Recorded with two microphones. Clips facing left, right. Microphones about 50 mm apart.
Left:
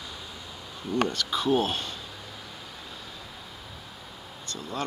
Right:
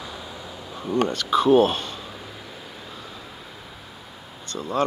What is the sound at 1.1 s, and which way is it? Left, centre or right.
Speech, right.